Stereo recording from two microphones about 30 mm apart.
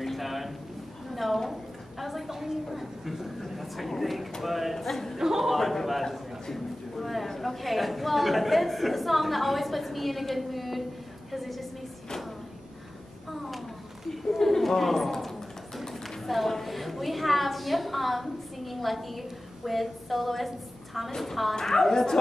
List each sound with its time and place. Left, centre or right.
0.0 s a sound: centre
1.4 s a woman's voice: centre
5.2 s a man's voice: centre
5.5 s a man's voice: centre
13.3 s a sound: centre
21.2 s a man's voice: centre
21.5 s a woman's voice: centre